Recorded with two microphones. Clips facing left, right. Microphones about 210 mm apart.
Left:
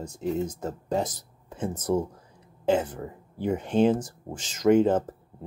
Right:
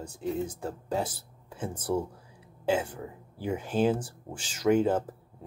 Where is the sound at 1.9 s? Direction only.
20° left (ahead or behind).